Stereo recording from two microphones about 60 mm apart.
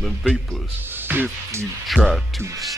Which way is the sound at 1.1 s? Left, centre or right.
Right.